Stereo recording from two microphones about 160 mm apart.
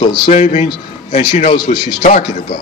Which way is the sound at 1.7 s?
45° left (ahead or behind).